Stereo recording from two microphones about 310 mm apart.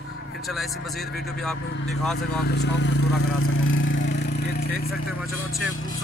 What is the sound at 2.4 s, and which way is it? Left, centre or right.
Speech, left.